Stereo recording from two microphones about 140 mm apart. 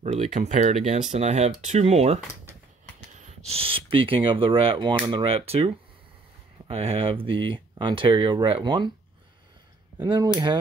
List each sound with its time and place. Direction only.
0.0 s speech: 55° right (ahead or behind)
3.2 s speech: 50° right (ahead or behind)
6.7 s speech: 45° right (ahead or behind)
9.9 s speech: 25° right (ahead or behind)